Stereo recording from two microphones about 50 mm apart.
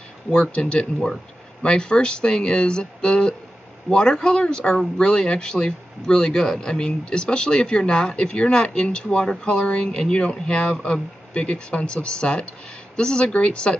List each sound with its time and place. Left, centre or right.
0.3 s speech: left